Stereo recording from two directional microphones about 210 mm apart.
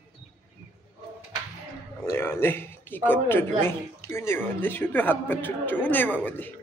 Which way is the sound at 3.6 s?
10° left (ahead or behind).